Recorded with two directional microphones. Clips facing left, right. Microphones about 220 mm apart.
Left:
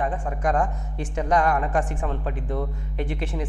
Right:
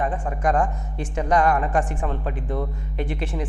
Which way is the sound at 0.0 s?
20° right (ahead or behind).